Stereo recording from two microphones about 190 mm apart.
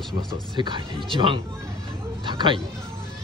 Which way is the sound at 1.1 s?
25° right (ahead or behind).